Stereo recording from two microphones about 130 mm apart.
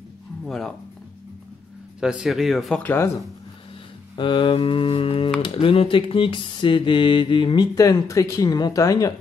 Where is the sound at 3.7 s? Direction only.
40° left (ahead or behind).